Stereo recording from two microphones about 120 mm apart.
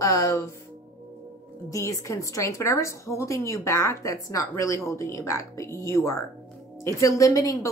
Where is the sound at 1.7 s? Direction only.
25° left (ahead or behind).